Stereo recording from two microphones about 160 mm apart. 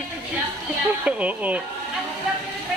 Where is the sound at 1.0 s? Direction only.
10° right (ahead or behind).